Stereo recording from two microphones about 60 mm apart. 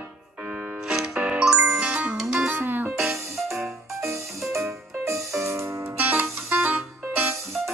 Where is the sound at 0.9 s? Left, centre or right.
Centre.